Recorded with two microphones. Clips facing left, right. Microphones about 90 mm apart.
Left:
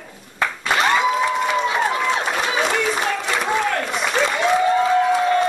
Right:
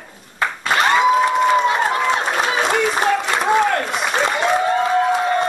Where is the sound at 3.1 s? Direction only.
25° right (ahead or behind).